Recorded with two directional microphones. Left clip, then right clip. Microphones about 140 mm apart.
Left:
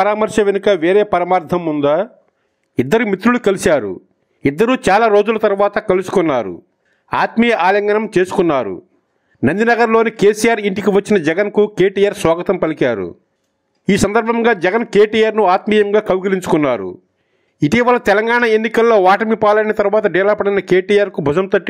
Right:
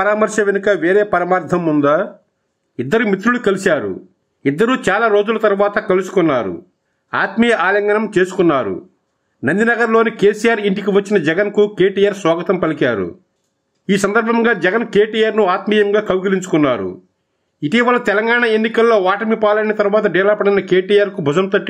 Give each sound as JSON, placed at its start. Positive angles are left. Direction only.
{"t": 0.0, "sound": "speech", "side_deg": 30}